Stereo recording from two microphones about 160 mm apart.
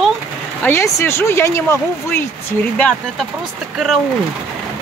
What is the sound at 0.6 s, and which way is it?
Speech, 15° left (ahead or behind).